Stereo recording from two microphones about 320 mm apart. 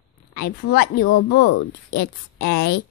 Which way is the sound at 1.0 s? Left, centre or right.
Left.